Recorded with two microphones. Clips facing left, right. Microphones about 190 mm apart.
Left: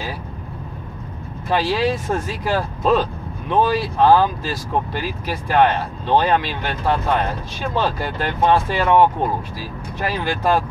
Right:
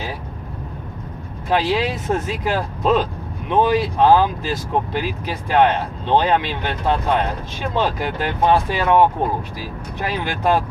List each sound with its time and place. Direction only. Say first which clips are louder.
1.5 s speech: even; 20° right (ahead or behind)